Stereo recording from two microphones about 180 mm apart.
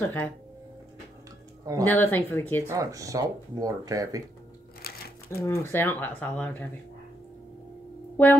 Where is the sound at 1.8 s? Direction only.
10° left (ahead or behind).